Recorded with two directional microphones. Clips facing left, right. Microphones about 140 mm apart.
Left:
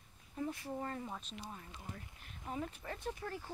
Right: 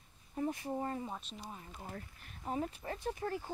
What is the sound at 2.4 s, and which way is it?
Speech, 30° right (ahead or behind).